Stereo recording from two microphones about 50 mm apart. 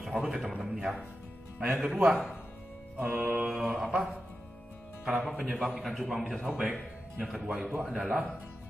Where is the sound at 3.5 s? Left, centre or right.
Centre.